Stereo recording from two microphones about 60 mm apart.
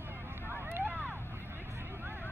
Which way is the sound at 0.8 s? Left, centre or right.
Right.